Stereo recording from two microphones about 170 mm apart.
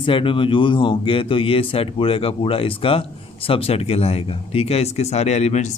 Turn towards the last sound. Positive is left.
turn(degrees=40)  # may be behind; listen again after turning